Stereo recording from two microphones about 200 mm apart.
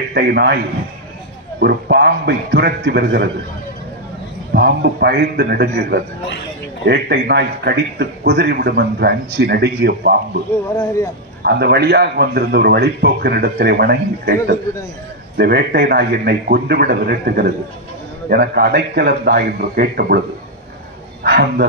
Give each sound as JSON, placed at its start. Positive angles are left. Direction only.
{"t": 0.1, "sound": "a man's voice", "side_deg": -55}
{"t": 1.6, "sound": "speech", "side_deg": -55}
{"t": 4.6, "sound": "speech", "side_deg": -50}
{"t": 10.5, "sound": "speech", "side_deg": 15}
{"t": 11.4, "sound": "a man's voice", "side_deg": -55}
{"t": 21.2, "sound": "speech", "side_deg": -50}